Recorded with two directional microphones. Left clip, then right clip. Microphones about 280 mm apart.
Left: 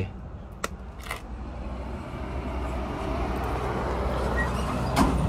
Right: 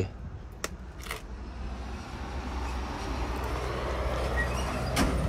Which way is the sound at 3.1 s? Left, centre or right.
Centre.